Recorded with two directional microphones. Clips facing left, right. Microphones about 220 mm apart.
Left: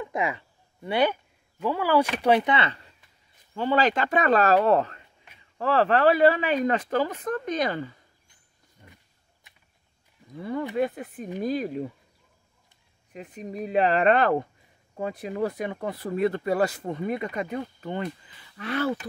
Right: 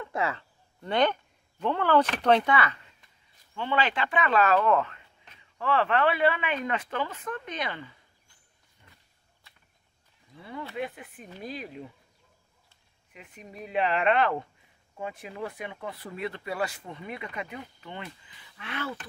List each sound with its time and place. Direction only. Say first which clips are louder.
0.0 s a sound: left 2 dB; 15° left (ahead or behind)
1.6 s speech: left 1 dB; 5° left (ahead or behind)
2.5 s speech: left 1 dB; 30° left (ahead or behind)
3.5 s speech: left 5 dB; 40° left (ahead or behind)
8.8 s a sound: left 8 dB; 45° left (ahead or behind)
10.3 s speech: left 9 dB; 45° left (ahead or behind)
13.1 s speech: left 10 dB; 40° left (ahead or behind)